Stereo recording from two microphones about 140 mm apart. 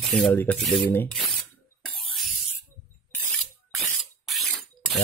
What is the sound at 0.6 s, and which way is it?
Speech, centre (ahead or behind).